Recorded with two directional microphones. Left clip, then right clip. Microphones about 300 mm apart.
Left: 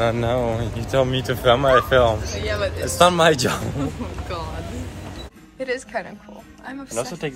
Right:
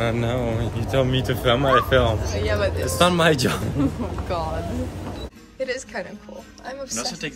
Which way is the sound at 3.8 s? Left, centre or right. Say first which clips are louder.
Right 3 dB; centre.